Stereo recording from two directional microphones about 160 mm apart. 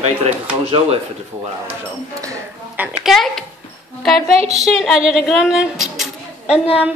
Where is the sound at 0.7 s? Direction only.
35° right (ahead or behind).